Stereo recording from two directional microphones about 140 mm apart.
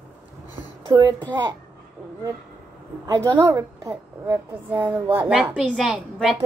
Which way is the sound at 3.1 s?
30° right (ahead or behind).